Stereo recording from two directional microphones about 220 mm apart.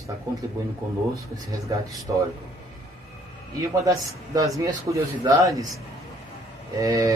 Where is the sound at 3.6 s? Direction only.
15° right (ahead or behind).